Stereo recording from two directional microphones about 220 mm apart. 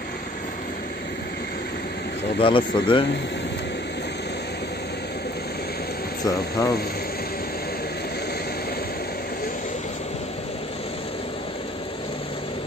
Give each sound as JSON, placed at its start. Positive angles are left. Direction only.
{"t": 2.3, "sound": "speech", "side_deg": 25}
{"t": 6.2, "sound": "speech", "side_deg": 15}